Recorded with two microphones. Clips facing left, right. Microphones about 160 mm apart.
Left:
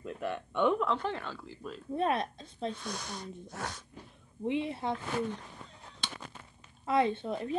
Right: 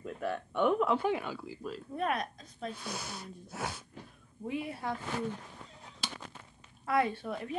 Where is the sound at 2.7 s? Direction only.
5° right (ahead or behind).